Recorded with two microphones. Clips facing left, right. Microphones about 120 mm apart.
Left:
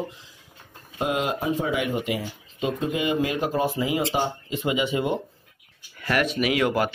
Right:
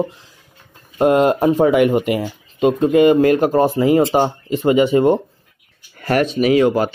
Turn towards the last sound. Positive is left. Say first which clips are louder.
# right 9 dB
turn(degrees=-30)  # may be behind; listen again after turning